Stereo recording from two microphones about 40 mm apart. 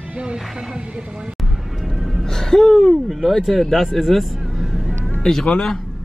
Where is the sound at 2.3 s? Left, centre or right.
Centre.